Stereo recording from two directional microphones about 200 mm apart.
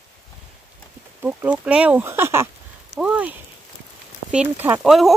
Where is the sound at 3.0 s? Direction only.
5° right (ahead or behind).